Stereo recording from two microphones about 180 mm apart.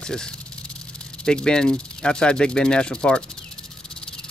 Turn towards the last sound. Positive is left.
turn(degrees=5)  # may be behind; listen again after turning